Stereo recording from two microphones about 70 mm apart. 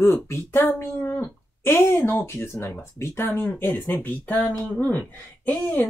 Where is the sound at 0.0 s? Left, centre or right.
Left.